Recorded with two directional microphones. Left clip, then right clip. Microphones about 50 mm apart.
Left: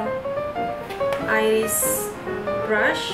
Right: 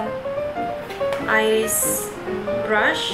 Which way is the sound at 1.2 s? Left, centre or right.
Centre.